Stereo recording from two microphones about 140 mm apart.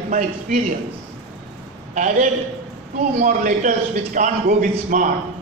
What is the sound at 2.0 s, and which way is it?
A man's voice, 65° right (ahead or behind).